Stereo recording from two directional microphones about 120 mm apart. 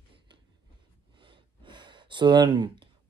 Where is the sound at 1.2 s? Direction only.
45° right (ahead or behind).